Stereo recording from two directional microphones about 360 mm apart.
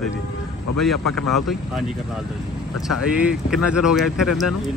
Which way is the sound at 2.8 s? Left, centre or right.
Centre.